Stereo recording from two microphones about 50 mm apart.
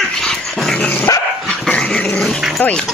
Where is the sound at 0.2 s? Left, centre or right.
Centre.